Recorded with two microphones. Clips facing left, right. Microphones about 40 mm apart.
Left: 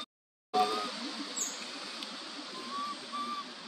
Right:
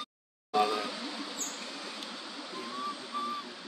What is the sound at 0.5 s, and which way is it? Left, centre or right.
Vehicle, right.